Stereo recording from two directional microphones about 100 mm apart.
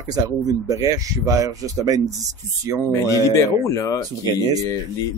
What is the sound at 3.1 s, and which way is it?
Speech, 35° left (ahead or behind).